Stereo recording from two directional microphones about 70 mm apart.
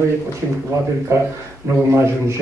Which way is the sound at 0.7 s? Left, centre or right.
Right.